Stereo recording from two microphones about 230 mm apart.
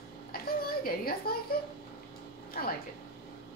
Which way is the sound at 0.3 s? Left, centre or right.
Left.